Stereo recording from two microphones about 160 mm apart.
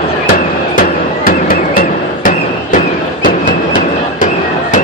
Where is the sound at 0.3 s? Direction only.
60° left (ahead or behind).